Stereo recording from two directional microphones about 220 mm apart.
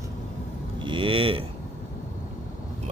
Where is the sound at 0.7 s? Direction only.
20° right (ahead or behind).